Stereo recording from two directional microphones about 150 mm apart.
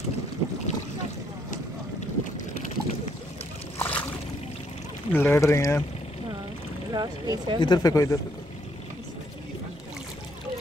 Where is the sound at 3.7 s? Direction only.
15° left (ahead or behind).